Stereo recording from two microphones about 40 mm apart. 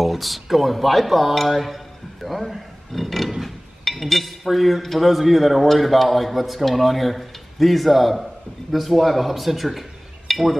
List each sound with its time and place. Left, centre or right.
0.0 s speech: centre